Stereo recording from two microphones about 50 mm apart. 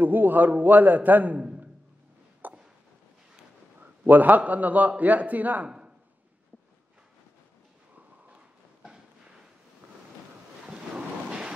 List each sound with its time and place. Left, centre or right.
0.0 s a man's voice: right
2.4 s a sound: right
3.8 s a man's voice: right
10.7 s thunder: centre